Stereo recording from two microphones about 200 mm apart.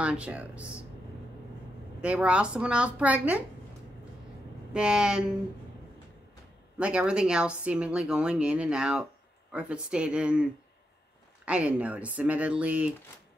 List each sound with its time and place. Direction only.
0.0 s speech: 5° right (ahead or behind)
2.0 s speech: 5° right (ahead or behind)
4.7 s speech: 5° right (ahead or behind)
6.8 s speech: 5° right (ahead or behind)